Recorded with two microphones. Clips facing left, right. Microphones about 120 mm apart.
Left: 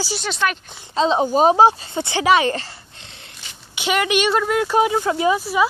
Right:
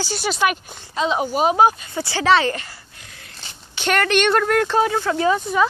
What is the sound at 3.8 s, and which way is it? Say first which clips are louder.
Speech: right 1 dB; 10° left (ahead or behind).